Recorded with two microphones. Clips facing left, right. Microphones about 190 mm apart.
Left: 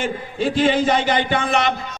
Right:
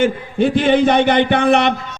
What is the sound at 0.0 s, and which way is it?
A man's voice, 60° right (ahead or behind).